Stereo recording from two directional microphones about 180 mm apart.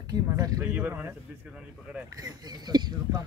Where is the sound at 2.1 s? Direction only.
20° right (ahead or behind).